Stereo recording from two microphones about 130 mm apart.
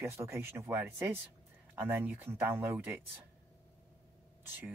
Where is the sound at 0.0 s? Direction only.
20° right (ahead or behind).